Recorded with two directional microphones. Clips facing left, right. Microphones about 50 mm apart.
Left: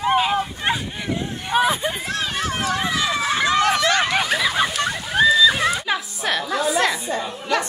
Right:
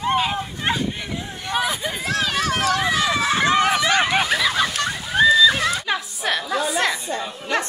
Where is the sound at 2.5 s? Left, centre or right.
Right.